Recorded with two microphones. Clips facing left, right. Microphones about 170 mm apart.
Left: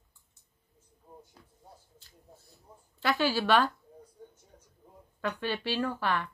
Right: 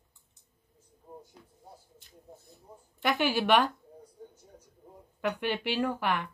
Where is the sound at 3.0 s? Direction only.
20° right (ahead or behind).